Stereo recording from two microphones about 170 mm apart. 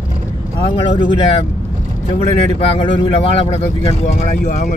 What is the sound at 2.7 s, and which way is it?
Speech, 30° left (ahead or behind).